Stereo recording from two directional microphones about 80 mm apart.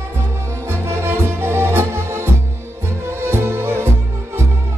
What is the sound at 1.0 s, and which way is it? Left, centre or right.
Music, right.